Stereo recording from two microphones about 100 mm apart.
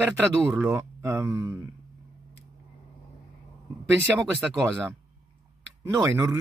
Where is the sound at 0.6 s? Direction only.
25° right (ahead or behind).